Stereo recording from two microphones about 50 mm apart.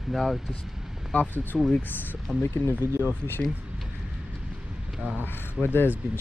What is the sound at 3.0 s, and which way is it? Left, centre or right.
Speech, right.